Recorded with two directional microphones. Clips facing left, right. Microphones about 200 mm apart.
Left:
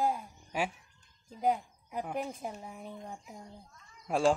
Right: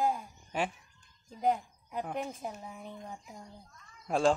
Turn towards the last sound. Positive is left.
turn(degrees=5)  # may be behind; listen again after turning